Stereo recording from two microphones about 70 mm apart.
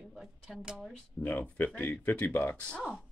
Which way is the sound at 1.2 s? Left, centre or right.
Left.